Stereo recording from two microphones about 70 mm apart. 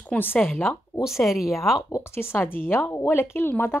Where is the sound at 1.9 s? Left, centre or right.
Left.